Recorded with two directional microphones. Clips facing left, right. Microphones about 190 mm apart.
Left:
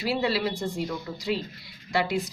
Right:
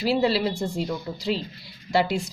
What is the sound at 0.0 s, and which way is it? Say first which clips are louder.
Speech: right 4 dB; 30° right (ahead or behind).